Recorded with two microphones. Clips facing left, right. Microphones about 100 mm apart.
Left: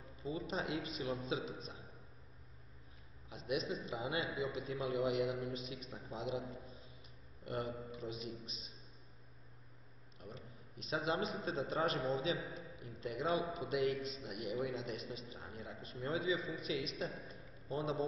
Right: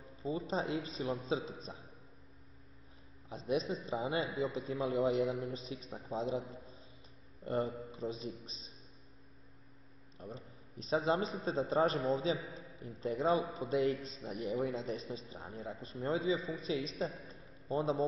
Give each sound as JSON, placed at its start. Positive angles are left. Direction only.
{"t": 0.1, "sound": "a sound", "side_deg": -30}
{"t": 0.5, "sound": "a man's voice", "side_deg": -30}
{"t": 3.3, "sound": "a man's voice", "side_deg": -35}
{"t": 7.4, "sound": "a man's voice", "side_deg": -30}
{"t": 10.1, "sound": "a man's voice", "side_deg": -30}
{"t": 17.3, "sound": "a sound", "side_deg": -30}